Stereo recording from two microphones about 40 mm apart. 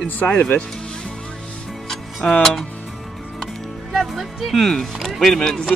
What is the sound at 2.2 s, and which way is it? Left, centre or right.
Speech, left.